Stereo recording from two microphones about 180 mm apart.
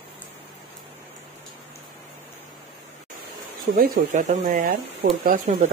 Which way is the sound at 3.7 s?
55° right (ahead or behind).